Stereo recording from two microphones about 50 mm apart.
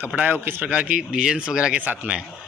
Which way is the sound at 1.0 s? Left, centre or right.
Centre.